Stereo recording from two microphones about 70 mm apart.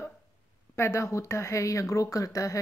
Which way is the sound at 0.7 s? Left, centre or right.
Left.